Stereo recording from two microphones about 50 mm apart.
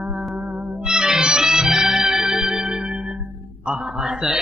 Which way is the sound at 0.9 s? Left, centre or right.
Centre.